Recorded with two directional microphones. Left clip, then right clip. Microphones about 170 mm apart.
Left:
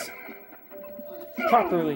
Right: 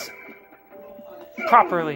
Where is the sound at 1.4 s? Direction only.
10° left (ahead or behind).